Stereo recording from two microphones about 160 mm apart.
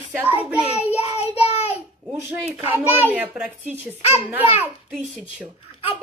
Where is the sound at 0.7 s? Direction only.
40° left (ahead or behind).